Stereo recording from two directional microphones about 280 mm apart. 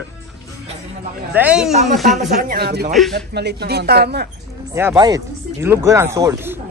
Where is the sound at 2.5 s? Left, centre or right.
Right.